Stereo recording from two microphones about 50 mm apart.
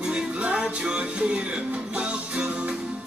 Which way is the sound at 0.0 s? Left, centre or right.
Centre.